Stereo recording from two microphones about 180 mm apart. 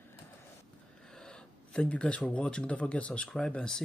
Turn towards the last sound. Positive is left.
turn(degrees=5)  # may be behind; listen again after turning